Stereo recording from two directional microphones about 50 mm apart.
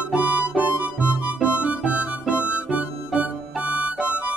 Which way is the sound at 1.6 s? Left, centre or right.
Right.